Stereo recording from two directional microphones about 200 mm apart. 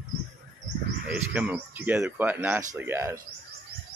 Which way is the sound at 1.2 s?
10° right (ahead or behind).